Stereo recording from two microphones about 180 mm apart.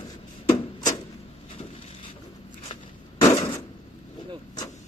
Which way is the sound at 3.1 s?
20° left (ahead or behind).